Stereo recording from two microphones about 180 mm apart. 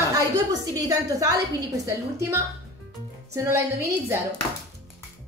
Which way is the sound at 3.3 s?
15° right (ahead or behind).